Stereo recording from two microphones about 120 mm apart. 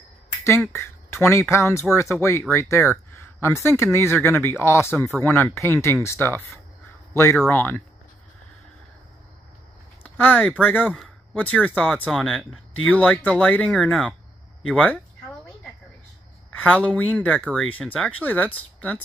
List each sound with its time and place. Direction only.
0.7 s speech: 20° left (ahead or behind)
4.9 s speech: 10° left (ahead or behind)
7.4 s speech: 15° left (ahead or behind)
10.0 s speech: 10° left (ahead or behind)
16.5 s speech: 10° left (ahead or behind)